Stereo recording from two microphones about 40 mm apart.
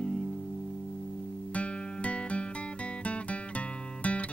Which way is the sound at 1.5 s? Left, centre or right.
Left.